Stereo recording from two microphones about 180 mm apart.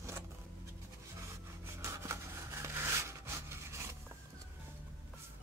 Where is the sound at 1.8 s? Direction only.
15° right (ahead or behind).